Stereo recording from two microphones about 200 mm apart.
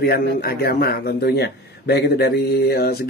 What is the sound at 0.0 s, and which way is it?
A man's voice, 50° left (ahead or behind).